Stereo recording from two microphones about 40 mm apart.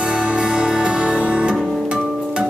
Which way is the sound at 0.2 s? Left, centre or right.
Right.